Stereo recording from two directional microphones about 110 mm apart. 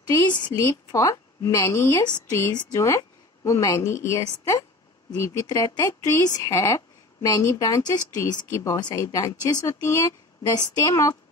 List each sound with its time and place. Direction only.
0.6 s a woman's voice: 30° left (ahead or behind)
8.7 s a woman's voice: 40° left (ahead or behind)